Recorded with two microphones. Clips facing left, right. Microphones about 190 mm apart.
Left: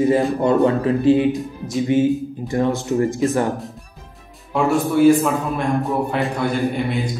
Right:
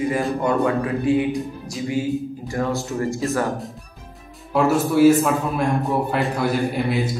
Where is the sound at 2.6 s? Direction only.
20° left (ahead or behind).